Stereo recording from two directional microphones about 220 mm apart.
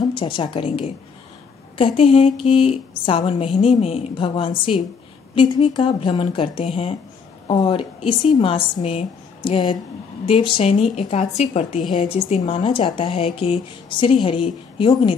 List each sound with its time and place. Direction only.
0.0 s a woman's voice: 20° left (ahead or behind)